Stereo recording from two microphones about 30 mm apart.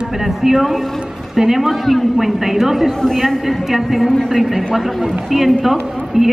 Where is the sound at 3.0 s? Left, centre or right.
Centre.